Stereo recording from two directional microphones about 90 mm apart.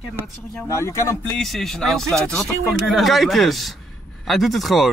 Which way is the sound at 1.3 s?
Centre (ahead or behind).